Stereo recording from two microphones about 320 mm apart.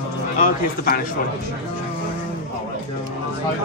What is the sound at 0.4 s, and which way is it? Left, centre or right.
Speech, left.